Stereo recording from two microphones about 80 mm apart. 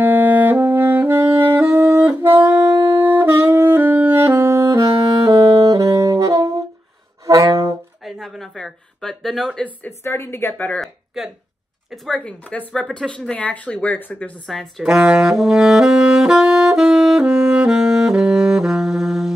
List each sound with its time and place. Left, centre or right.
0.0 s saxophone: right
8.0 s speech: centre
9.8 s a woman's voice: left
11.2 s speech: centre
12.2 s speech: centre
14.5 s speech: centre
14.9 s saxophone: centre